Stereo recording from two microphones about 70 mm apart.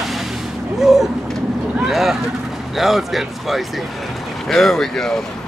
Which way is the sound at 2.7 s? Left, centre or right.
Centre.